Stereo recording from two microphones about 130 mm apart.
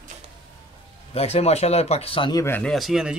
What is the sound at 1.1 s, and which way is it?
Speech, 55° left (ahead or behind).